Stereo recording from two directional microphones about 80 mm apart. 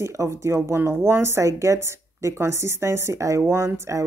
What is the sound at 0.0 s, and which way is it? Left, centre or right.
Speech, right.